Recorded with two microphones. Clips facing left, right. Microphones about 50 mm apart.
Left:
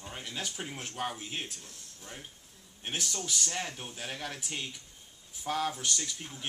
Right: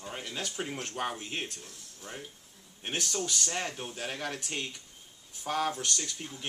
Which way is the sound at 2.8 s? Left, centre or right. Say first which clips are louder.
Right 3 dB; centre.